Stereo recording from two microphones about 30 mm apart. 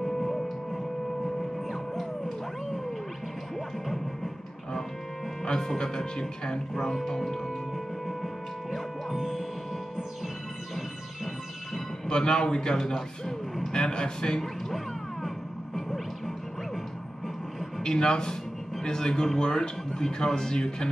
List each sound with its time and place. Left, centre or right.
0.0 s music: centre
1.7 s music: centre
3.8 s music: centre
5.4 s music: left
5.8 s speech: left
8.2 s music: centre
9.1 s music: centre
12.1 s speech: left
15.2 s music: centre
17.8 s speech: left